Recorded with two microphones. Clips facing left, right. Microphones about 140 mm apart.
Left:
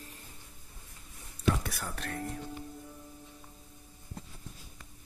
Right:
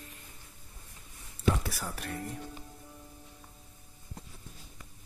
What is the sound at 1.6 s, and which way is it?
Speech, 5° right (ahead or behind).